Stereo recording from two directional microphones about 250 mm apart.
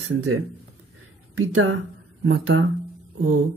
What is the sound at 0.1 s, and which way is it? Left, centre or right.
Speech, right.